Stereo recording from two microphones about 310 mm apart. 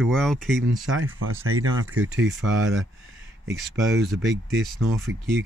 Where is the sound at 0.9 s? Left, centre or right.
Right.